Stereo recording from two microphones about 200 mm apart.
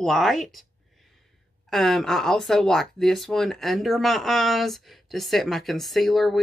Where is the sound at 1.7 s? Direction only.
Centre (ahead or behind).